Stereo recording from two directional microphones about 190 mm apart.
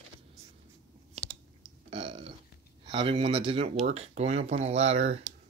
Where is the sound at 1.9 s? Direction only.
30° right (ahead or behind).